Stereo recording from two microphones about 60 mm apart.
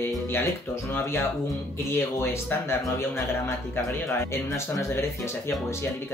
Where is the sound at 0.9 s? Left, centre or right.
Left.